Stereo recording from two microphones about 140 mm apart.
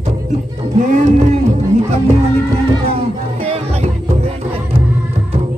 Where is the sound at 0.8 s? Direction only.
60° right (ahead or behind).